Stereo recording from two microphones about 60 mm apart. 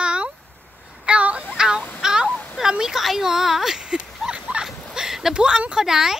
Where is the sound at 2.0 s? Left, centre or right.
Centre.